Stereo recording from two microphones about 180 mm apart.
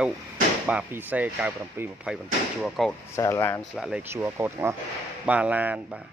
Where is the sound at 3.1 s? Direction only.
15° left (ahead or behind).